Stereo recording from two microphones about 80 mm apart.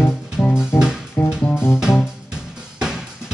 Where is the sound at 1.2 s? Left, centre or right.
Left.